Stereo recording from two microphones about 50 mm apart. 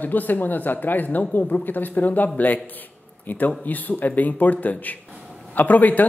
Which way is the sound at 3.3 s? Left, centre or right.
Left.